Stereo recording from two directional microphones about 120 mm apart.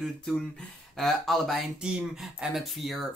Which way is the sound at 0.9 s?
Centre (ahead or behind).